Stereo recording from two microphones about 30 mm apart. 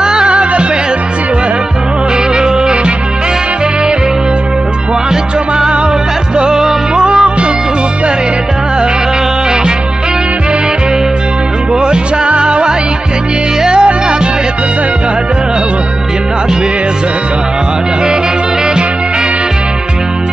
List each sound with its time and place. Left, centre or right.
0.0 s music: right
0.3 s music: right
2.3 s music: right
6.3 s music: right
11.7 s music: right